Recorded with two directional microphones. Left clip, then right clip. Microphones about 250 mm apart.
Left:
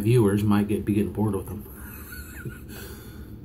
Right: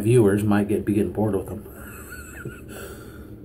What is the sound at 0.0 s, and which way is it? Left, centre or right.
Speech, centre.